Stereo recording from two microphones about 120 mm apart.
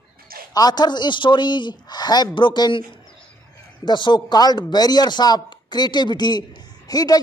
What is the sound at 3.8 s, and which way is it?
A man's voice, 40° left (ahead or behind).